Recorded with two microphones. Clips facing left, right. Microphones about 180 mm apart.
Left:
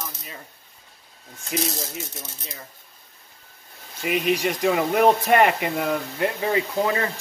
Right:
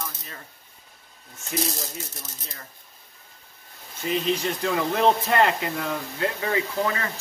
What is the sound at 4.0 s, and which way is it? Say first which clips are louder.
Speech: left 3 dB; 10° left (ahead or behind).